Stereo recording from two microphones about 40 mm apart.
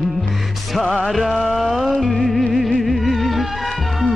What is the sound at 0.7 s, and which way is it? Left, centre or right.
Music, centre.